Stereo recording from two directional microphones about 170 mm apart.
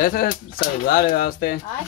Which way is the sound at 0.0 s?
60° left (ahead or behind).